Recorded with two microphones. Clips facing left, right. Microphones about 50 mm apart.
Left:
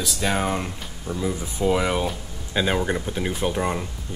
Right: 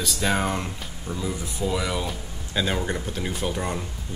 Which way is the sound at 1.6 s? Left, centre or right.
Left.